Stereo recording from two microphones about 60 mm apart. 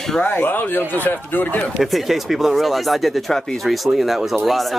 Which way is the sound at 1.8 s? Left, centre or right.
Centre.